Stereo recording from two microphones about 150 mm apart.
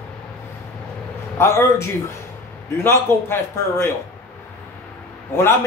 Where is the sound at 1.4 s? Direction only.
20° left (ahead or behind).